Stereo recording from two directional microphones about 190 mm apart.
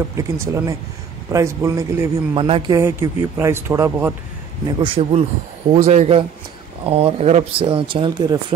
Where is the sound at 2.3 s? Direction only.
30° right (ahead or behind).